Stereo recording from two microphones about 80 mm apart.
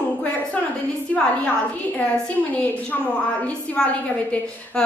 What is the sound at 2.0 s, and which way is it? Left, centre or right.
A woman's voice, centre.